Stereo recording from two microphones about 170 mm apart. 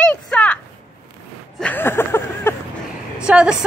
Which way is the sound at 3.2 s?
5° right (ahead or behind).